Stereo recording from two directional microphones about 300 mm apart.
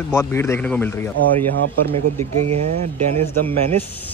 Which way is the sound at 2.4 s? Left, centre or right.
Right.